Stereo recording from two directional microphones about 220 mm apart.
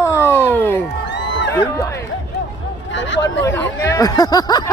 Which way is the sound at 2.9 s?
55° left (ahead or behind).